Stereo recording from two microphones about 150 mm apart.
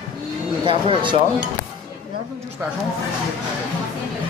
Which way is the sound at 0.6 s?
35° right (ahead or behind).